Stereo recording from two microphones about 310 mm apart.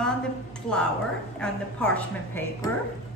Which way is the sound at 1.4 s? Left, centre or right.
Centre.